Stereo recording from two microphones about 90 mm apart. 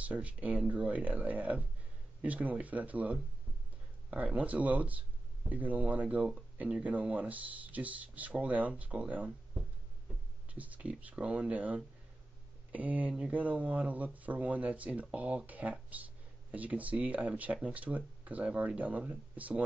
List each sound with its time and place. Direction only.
0.1 s speech: 15° right (ahead or behind)